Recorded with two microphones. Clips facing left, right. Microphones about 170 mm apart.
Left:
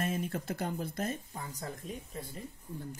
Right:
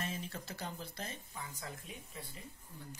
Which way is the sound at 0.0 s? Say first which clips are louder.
Left 8 dB; 55° left (ahead or behind).